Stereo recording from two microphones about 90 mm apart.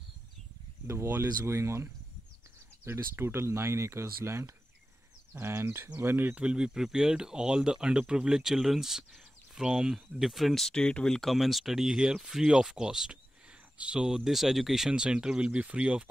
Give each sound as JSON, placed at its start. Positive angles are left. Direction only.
{"t": 0.8, "sound": "speech", "side_deg": -25}